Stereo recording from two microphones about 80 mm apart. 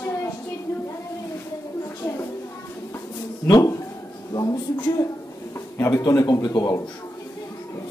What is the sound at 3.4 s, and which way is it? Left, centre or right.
Speech, left.